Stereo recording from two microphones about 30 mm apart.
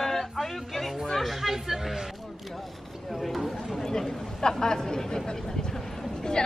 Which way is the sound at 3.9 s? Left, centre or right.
Left.